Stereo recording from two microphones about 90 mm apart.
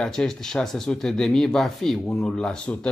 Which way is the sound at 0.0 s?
5° left (ahead or behind).